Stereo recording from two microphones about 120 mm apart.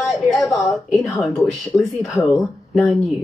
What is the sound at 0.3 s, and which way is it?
Speech, centre (ahead or behind).